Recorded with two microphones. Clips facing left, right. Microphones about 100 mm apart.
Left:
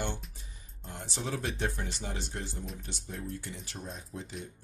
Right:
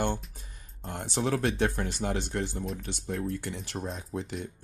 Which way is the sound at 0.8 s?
65° right (ahead or behind).